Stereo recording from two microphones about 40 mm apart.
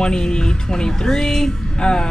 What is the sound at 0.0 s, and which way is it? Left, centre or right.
Speech, left.